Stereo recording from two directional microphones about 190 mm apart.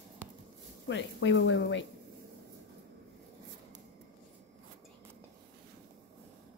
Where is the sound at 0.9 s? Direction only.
70° left (ahead or behind).